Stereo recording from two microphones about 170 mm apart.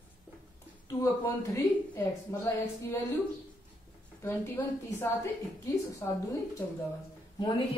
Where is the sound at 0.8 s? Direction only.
20° left (ahead or behind).